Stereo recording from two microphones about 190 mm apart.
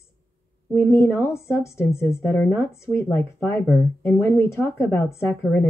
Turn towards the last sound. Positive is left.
turn(degrees=15)  # may be behind; listen again after turning